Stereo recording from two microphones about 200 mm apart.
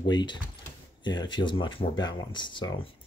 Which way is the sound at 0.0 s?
20° left (ahead or behind).